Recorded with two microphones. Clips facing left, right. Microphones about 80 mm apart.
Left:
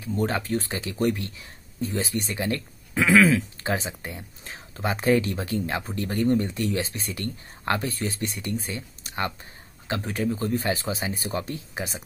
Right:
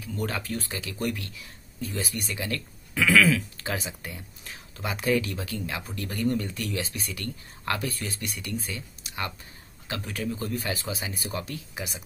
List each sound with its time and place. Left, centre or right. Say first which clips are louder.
0.0 s speech: left 5 dB; left